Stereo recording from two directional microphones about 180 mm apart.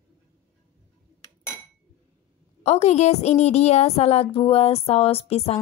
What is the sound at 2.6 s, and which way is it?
A woman's voice, 40° left (ahead or behind).